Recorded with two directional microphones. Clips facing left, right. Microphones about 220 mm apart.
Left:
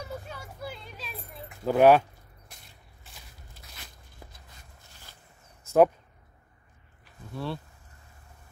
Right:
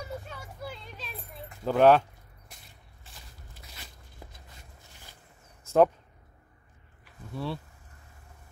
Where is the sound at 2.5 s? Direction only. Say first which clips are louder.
Even; centre (ahead or behind).